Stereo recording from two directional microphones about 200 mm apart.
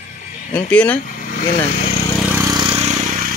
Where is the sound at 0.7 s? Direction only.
10° left (ahead or behind).